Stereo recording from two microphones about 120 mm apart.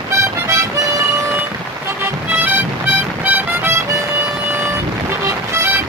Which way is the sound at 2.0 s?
15° right (ahead or behind).